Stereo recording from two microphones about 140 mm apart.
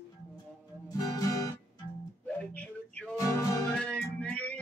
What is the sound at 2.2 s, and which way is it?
Music, 10° left (ahead or behind).